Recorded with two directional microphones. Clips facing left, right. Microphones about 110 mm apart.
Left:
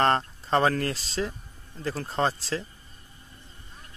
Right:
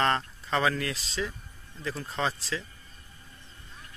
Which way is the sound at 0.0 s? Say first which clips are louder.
Left 4 dB; 40° left (ahead or behind).